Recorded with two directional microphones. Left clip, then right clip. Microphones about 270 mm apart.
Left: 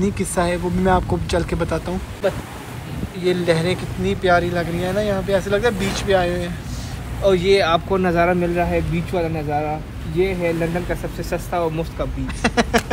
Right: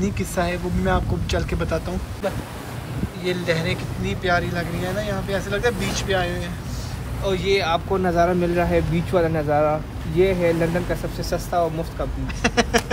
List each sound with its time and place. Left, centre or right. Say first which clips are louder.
0.0 s speech: left 3 dB; centre
3.3 s speech: left 5 dB; centre
7.2 s speech: left 5 dB; left
8.2 s speech: left 1 dB; centre
8.5 s speech: even; centre
11.1 s speech: left 1 dB; centre
12.4 s speech: left 1 dB; centre